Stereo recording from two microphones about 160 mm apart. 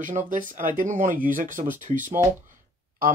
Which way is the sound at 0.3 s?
55° right (ahead or behind).